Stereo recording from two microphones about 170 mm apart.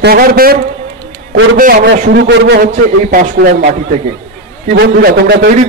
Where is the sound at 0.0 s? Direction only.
60° right (ahead or behind); by 2.6 s 85° right.